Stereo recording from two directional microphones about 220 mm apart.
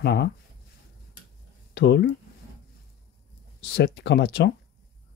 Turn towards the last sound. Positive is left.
turn(degrees=50)  # may be behind; listen again after turning